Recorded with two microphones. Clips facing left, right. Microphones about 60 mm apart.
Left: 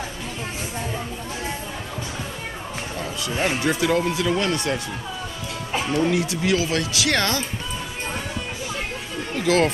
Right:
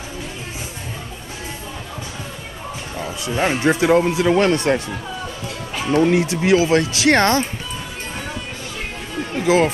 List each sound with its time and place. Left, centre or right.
3.0 s speech: right
5.9 s speech: right
9.3 s speech: centre